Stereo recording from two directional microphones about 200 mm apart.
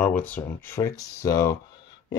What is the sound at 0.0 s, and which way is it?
Speech, 10° left (ahead or behind).